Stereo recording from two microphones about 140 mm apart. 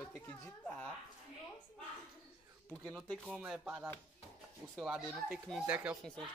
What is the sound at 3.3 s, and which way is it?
Speech, 5° right (ahead or behind).